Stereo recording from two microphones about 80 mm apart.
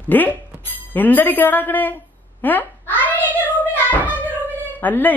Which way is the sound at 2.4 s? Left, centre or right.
Left.